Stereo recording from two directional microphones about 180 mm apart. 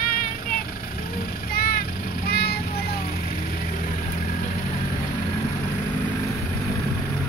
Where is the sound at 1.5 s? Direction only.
55° left (ahead or behind).